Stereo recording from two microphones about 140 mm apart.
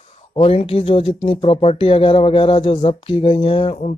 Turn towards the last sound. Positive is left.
turn(degrees=40)  # may be behind; listen again after turning